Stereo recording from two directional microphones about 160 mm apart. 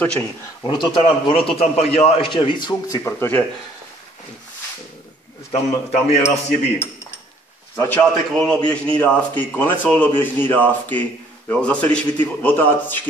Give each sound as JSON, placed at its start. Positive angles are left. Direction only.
{"t": 0.7, "sound": "a man's voice", "side_deg": 30}
{"t": 3.0, "sound": "a man's voice", "side_deg": 15}
{"t": 5.5, "sound": "a man's voice", "side_deg": 45}
{"t": 7.7, "sound": "a man's voice", "side_deg": 15}